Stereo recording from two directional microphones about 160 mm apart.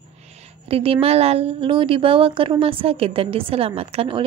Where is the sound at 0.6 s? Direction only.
35° right (ahead or behind).